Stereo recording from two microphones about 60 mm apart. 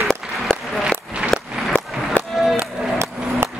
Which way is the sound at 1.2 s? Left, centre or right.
Centre.